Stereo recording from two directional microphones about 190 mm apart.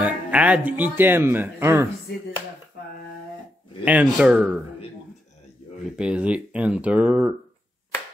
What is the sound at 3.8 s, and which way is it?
Speech, 5° right (ahead or behind).